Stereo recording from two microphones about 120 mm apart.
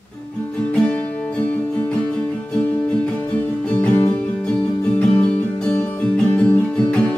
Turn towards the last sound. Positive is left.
turn(degrees=10)  # may be behind; listen again after turning